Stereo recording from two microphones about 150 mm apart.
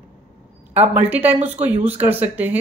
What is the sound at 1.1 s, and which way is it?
Speech, 10° right (ahead or behind).